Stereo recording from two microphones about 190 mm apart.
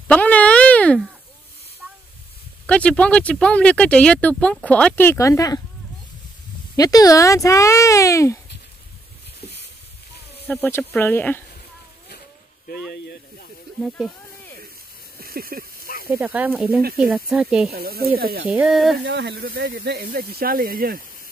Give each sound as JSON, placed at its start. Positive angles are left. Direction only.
{"t": 0.1, "sound": "a sound", "side_deg": 5}
{"t": 2.6, "sound": "speech", "side_deg": 5}
{"t": 6.8, "sound": "speech", "side_deg": 20}
{"t": 10.4, "sound": "speech", "side_deg": 10}
{"t": 12.6, "sound": "snake", "side_deg": 55}
{"t": 13.8, "sound": "speech", "side_deg": 0}
{"t": 15.1, "sound": "a sound", "side_deg": -50}
{"t": 15.8, "sound": "snake", "side_deg": 50}
{"t": 16.1, "sound": "speech", "side_deg": -10}
{"t": 17.6, "sound": "speech", "side_deg": -55}
{"t": 18.5, "sound": "speech", "side_deg": -5}
{"t": 19.0, "sound": "speech", "side_deg": -60}